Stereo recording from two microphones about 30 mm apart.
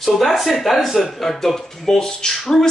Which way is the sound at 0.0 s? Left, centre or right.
Centre.